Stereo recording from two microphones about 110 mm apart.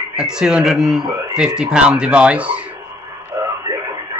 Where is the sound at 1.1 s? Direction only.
35° right (ahead or behind).